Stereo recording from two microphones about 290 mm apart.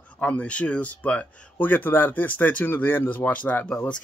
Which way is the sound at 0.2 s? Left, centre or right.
Centre.